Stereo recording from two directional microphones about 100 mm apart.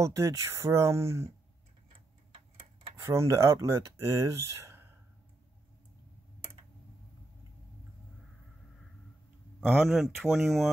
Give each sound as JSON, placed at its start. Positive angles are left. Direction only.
{"t": 0.0, "sound": "speech", "side_deg": -30}
{"t": 3.0, "sound": "speech", "side_deg": -30}
{"t": 9.6, "sound": "speech", "side_deg": 5}